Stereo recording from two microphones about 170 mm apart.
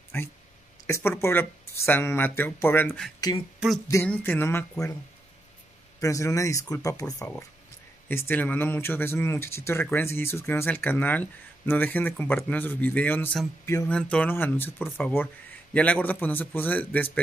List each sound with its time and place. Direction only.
0.1 s speech: 15° left (ahead or behind)
3.5 s a sound: centre (ahead or behind)
3.9 s speech: 10° left (ahead or behind)
5.9 s speech: 20° left (ahead or behind)